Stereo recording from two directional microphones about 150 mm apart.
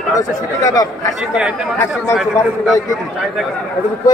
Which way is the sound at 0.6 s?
20° left (ahead or behind).